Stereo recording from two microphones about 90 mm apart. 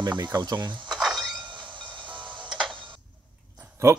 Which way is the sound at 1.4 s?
60° right (ahead or behind).